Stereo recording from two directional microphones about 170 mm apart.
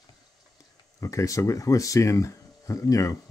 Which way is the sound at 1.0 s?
20° left (ahead or behind).